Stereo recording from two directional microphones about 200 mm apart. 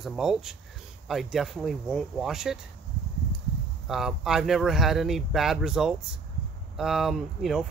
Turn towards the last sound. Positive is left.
turn(degrees=0)  # may be behind; listen again after turning